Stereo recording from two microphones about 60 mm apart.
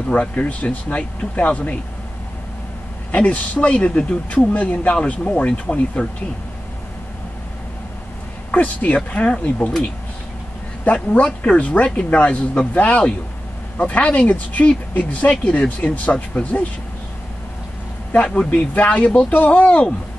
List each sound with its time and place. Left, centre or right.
0.1 s speech: left
3.1 s speech: left
8.5 s speech: left
10.8 s speech: left
18.1 s speech: centre